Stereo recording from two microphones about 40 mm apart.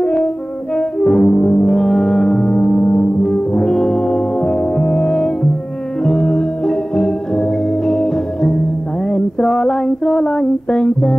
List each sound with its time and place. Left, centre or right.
0.0 s french horn: left
0.7 s brass instrument: left
1.7 s brass instrument: centre
3.5 s music: centre
9.1 s a sound: centre